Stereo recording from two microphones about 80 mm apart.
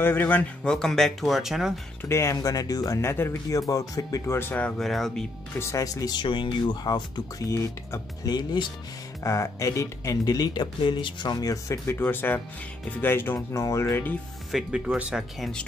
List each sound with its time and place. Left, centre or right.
0.0 s speech: left
0.7 s speech: centre
2.0 s speech: left
3.0 s speech: left
3.4 s speech: left
4.4 s speech: left
4.6 s speech: centre
5.6 s speech: left
6.1 s speech: left
8.3 s speech: left
9.2 s speech: left
11.3 s speech: left
11.8 s speech: left
14.5 s speech: centre